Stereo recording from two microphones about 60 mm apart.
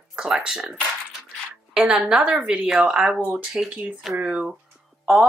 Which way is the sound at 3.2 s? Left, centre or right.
Right.